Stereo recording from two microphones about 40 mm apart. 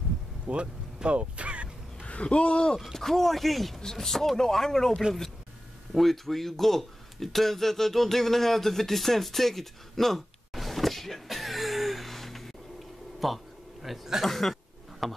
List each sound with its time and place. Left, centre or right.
0.5 s speech: right
2.0 s speech: left
2.8 s speech: centre
13.8 s a man's voice: centre
14.2 s a sound: centre